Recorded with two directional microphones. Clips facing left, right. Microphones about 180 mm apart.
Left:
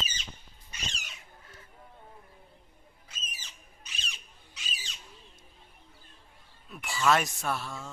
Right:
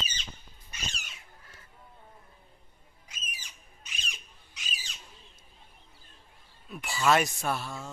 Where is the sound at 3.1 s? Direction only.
10° right (ahead or behind).